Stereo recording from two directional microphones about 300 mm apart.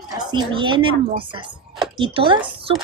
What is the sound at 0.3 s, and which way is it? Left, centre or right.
Speech, centre.